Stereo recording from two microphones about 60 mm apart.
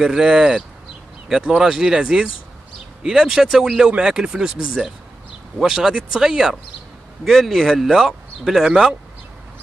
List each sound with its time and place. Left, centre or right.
0.0 s speech: centre